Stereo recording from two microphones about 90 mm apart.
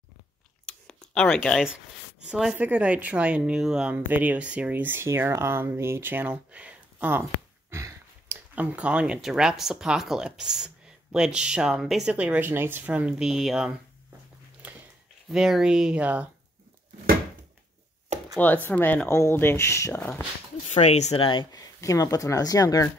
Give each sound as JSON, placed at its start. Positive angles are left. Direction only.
{"t": 0.7, "sound": "a sound", "side_deg": 10}
{"t": 2.2, "sound": "speech", "side_deg": -5}
{"t": 2.5, "sound": "speech", "side_deg": -15}
{"t": 3.9, "sound": "speech", "side_deg": -20}
{"t": 7.7, "sound": "a sound", "side_deg": -30}
{"t": 8.5, "sound": "speech", "side_deg": -15}
{"t": 12.1, "sound": "speech", "side_deg": -15}
{"t": 13.3, "sound": "speech", "side_deg": -5}
{"t": 14.6, "sound": "a sound", "side_deg": -15}
{"t": 15.2, "sound": "speech", "side_deg": -5}
{"t": 18.4, "sound": "speech", "side_deg": 20}
{"t": 19.9, "sound": "speech", "side_deg": 10}
{"t": 21.2, "sound": "speech", "side_deg": 65}
{"t": 21.5, "sound": "speech", "side_deg": 40}